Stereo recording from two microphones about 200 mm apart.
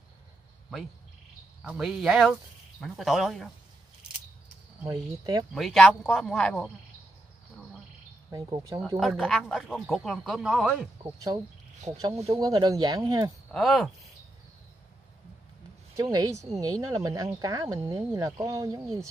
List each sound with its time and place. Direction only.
1.6 s speech: centre (ahead or behind)
4.8 s speech: 20° right (ahead or behind)
5.5 s speech: centre (ahead or behind)
8.3 s speech: 20° right (ahead or behind)
8.9 s speech: centre (ahead or behind)
11.1 s speech: 15° right (ahead or behind)
12.4 s speech: 20° right (ahead or behind)
13.5 s speech: centre (ahead or behind)
16.0 s speech: 20° right (ahead or behind)